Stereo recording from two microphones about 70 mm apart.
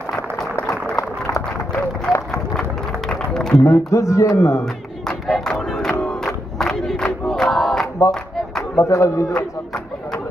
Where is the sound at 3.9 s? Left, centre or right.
Left.